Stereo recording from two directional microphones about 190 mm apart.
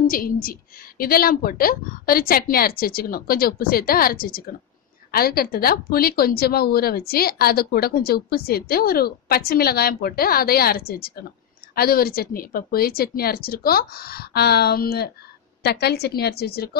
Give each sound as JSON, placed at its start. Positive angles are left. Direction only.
{"t": 0.0, "sound": "a woman's voice", "side_deg": 50}